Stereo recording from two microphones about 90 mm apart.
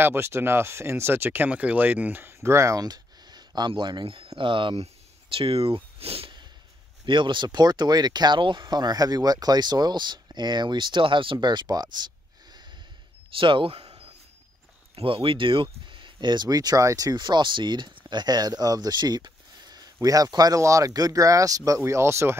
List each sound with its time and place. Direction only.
0.0 s speech: 25° right (ahead or behind)
2.8 s speech: 50° right (ahead or behind); by 4.8 s 65° right (ahead or behind)
5.3 s speech: 90° right
5.9 s a sound: 90° right
7.1 s speech: 65° right (ahead or behind)
11.3 s speech: 50° right (ahead or behind)
13.4 s speech: 70° right (ahead or behind); by 22.4 s 30° right (ahead or behind)